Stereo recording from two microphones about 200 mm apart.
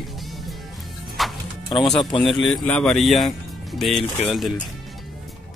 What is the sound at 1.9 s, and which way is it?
Speech, centre (ahead or behind).